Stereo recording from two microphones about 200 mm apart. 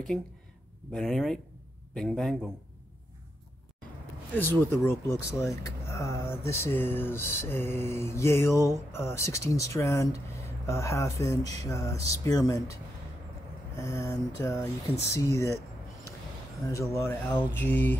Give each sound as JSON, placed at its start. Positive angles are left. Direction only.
{"t": 0.9, "sound": "speech", "side_deg": 0}
{"t": 4.4, "sound": "speech", "side_deg": 10}
{"t": 13.7, "sound": "speech", "side_deg": 15}
{"t": 16.6, "sound": "speech", "side_deg": 15}